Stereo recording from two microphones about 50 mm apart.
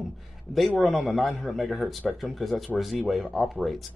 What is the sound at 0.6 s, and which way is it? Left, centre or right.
Speech, centre.